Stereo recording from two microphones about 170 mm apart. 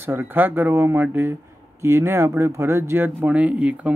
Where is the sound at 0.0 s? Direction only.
10° right (ahead or behind).